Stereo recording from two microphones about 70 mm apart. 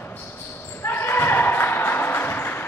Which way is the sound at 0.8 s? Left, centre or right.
Left.